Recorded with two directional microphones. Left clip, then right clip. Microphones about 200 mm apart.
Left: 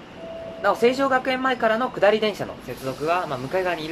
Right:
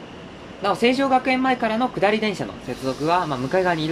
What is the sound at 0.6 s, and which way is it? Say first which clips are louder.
Speech: even; 15° right (ahead or behind).